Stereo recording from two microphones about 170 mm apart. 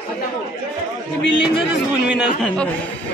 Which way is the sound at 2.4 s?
5° left (ahead or behind).